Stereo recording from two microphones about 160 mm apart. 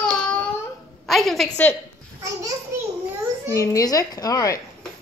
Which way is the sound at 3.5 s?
20° left (ahead or behind).